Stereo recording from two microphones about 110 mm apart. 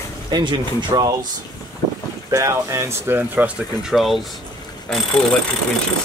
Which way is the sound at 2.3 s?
25° right (ahead or behind).